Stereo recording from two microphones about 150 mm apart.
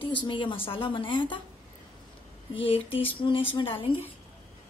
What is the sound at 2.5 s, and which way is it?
A woman's voice, 40° left (ahead or behind).